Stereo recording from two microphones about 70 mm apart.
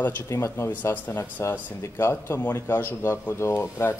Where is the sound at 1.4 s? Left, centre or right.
Left.